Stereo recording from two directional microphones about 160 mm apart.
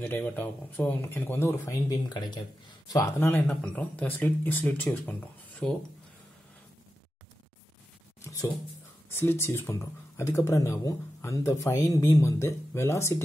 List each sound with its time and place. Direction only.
0.0 s speech: 10° left (ahead or behind)
8.2 s a sound: 20° left (ahead or behind)
9.1 s speech: 15° left (ahead or behind)